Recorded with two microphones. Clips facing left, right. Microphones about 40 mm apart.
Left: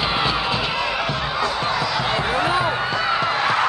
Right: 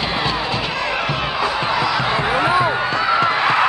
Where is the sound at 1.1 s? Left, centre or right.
Centre.